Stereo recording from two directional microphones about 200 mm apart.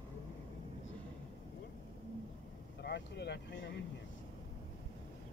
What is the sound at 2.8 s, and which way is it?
Speech, 55° left (ahead or behind).